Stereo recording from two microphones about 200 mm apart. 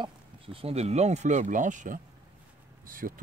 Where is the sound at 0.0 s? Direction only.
30° right (ahead or behind).